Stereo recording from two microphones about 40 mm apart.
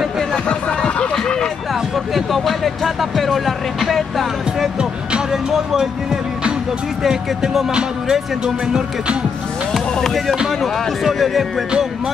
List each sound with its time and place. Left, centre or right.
0.3 s music: left
1.1 s a sound: centre
2.1 s music: centre
7.0 s speech: centre
11.1 s music: centre